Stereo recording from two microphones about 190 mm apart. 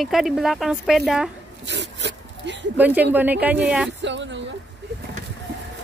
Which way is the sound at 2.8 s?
10° right (ahead or behind).